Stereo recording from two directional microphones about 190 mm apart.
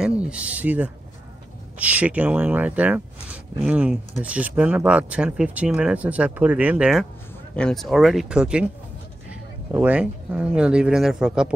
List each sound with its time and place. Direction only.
0.2 s speech: 5° right (ahead or behind)